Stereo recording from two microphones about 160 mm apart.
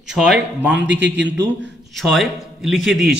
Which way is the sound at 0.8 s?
90° right.